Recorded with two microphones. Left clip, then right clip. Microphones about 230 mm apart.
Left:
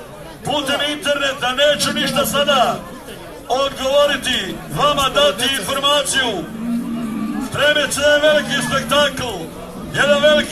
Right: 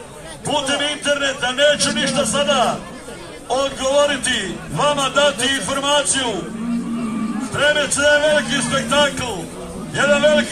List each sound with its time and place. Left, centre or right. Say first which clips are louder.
0.5 s a man's voice: left 1 dB; centre
7.5 s a man's voice: left 1 dB; left